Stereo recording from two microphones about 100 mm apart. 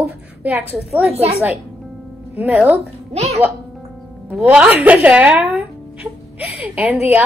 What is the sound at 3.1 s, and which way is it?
Music, 90° right.